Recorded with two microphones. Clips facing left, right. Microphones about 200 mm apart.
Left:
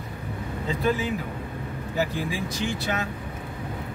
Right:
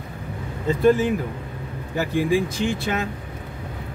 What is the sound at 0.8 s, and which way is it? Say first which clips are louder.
Speech: right 8 dB; 50° right (ahead or behind).